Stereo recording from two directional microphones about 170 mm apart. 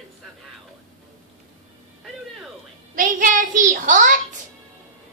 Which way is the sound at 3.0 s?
50° right (ahead or behind).